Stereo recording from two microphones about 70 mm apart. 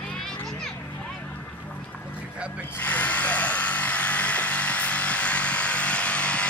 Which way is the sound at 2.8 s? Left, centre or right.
Left.